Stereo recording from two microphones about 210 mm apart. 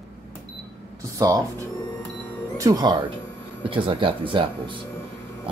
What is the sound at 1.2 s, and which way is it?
Speech, 15° right (ahead or behind).